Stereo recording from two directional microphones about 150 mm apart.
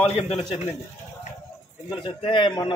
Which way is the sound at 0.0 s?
40° left (ahead or behind).